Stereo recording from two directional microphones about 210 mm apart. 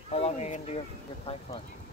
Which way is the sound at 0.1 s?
30° left (ahead or behind).